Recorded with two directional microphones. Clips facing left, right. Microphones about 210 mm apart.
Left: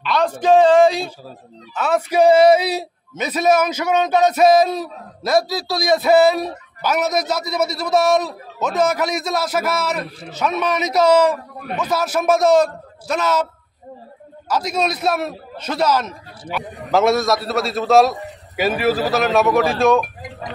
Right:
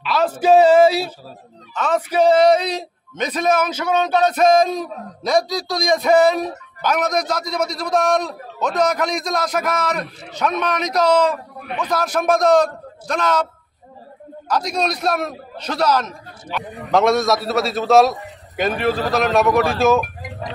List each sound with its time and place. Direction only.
0.0 s speech: 5° right (ahead or behind)
1.8 s a man's voice: 10° left (ahead or behind)
14.5 s a man's voice: 5° left (ahead or behind)